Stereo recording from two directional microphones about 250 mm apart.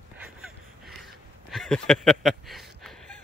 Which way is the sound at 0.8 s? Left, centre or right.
Centre.